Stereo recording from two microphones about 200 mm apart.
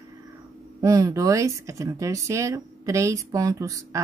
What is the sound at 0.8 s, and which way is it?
Speech, 15° right (ahead or behind).